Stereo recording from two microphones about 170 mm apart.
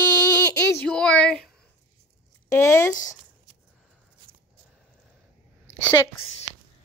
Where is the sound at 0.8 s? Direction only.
5° left (ahead or behind).